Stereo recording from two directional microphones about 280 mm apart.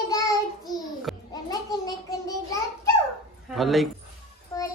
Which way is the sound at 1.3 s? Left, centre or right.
Centre.